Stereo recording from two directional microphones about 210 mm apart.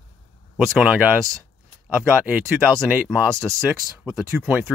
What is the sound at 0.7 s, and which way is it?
Speech, 5° right (ahead or behind).